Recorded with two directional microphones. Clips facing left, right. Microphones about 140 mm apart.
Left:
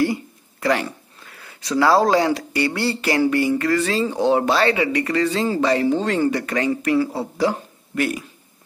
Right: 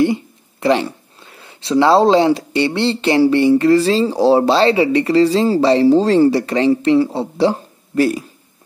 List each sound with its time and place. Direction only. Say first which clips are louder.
0.0 s speech: right 5 dB; 25° right (ahead or behind)